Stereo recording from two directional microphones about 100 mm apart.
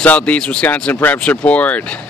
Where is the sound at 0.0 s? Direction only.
15° left (ahead or behind).